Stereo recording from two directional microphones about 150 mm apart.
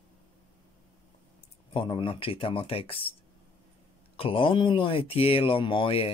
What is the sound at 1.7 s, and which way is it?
Speech, 35° left (ahead or behind).